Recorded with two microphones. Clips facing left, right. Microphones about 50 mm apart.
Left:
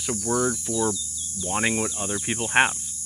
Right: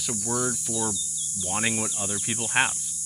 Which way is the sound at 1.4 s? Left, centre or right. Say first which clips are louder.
Left 3 dB; left.